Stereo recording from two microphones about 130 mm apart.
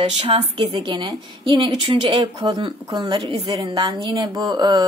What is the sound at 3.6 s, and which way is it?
A woman's voice, 30° right (ahead or behind).